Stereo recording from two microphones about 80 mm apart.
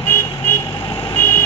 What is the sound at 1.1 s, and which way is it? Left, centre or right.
Vehicle, left.